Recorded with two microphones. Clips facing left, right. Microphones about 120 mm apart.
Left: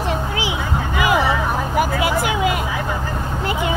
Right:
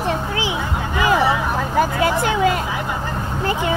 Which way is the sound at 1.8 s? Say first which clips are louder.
Right 1 dB; 10° left (ahead or behind).